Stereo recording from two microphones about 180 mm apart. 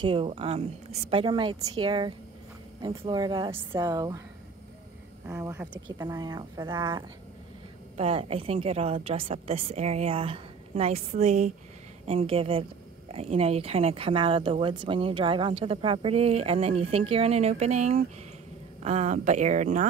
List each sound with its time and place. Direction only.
0.0 s a woman's voice: 30° right (ahead or behind)
5.2 s a woman's voice: 10° right (ahead or behind)
8.0 s speech: 35° right (ahead or behind)